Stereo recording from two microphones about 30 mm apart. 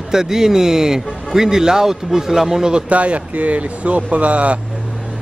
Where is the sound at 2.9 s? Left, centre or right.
Right.